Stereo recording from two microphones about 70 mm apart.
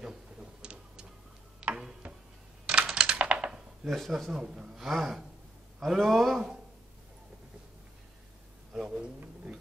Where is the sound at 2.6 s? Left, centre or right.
Centre.